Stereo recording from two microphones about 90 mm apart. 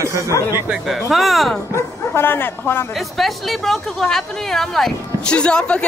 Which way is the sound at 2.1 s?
25° left (ahead or behind).